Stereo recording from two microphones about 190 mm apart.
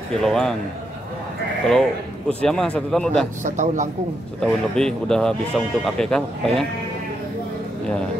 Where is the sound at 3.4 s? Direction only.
40° right (ahead or behind).